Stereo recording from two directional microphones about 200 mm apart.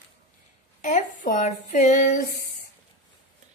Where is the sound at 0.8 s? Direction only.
40° left (ahead or behind).